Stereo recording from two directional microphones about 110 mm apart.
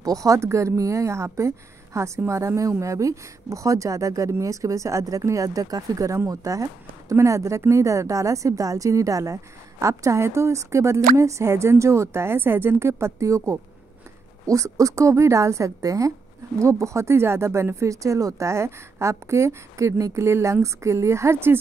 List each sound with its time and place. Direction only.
0.0 s speech: 30° right (ahead or behind)